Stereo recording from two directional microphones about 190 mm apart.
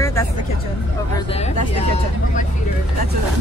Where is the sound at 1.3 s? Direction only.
35° left (ahead or behind).